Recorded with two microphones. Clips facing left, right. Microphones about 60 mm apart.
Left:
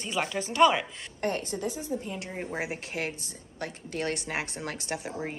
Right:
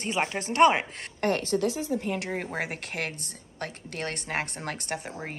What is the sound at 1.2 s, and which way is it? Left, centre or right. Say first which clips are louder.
Speech: right 5 dB; right.